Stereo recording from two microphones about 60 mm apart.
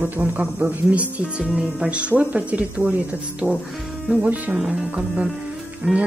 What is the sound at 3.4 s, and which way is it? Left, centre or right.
Speech, left.